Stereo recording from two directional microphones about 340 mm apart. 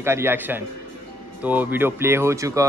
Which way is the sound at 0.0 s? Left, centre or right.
Centre.